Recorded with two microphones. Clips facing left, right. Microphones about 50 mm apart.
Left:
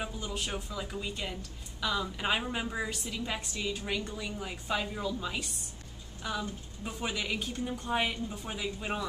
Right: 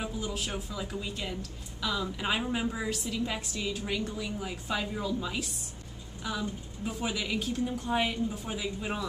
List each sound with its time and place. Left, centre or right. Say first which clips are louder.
0.2 s a woman's voice: right 2 dB; centre